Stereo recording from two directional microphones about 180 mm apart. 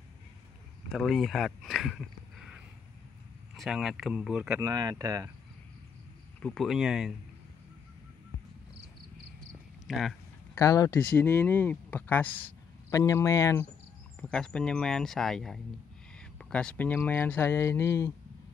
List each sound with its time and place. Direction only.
0.9 s speech: centre (ahead or behind)
4.6 s speech: 20° right (ahead or behind)
6.4 s speech: 5° left (ahead or behind)
9.8 s speech: centre (ahead or behind)
10.5 s speech: 20° left (ahead or behind)
14.2 s speech: 5° left (ahead or behind)